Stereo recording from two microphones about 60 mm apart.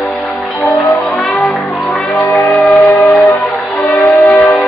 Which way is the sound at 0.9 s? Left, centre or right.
Centre.